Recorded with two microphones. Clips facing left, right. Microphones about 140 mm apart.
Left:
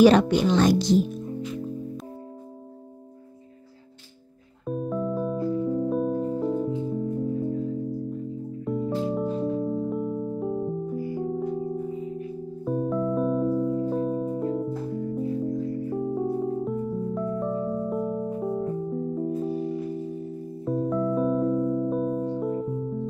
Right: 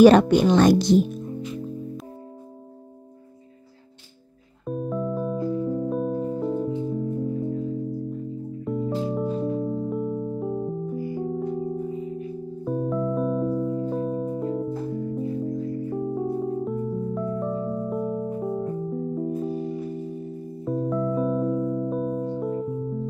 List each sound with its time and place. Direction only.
0.0 s speech: 50° right (ahead or behind)
4.6 s music: centre (ahead or behind)
8.6 s music: centre (ahead or behind)